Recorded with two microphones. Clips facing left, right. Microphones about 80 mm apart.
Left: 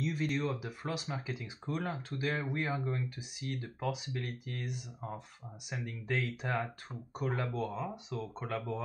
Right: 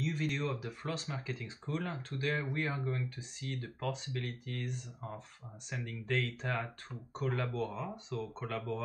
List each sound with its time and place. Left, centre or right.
0.0 s speech: centre